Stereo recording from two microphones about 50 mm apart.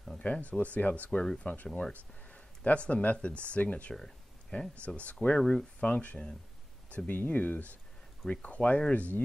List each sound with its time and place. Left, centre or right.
0.2 s speech: left
3.9 s a sound: centre
4.8 s speech: left
7.1 s speech: left